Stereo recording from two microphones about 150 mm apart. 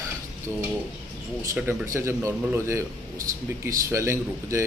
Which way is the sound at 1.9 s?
15° right (ahead or behind).